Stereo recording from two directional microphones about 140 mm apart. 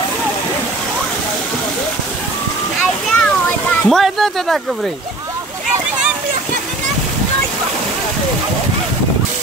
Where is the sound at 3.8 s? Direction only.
Centre (ahead or behind).